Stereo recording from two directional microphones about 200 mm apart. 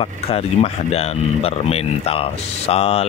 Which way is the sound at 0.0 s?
30° left (ahead or behind).